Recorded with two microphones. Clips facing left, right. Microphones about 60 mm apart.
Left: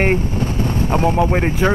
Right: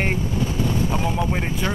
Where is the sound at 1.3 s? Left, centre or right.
Left.